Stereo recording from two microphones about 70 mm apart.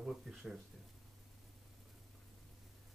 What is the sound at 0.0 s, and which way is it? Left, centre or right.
Speech, centre.